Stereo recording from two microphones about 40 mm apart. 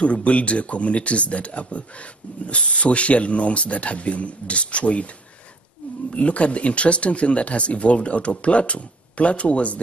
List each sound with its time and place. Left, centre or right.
0.0 s speech: left
6.1 s speech: left